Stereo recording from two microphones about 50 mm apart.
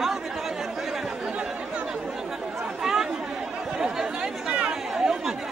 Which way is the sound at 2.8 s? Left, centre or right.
Centre.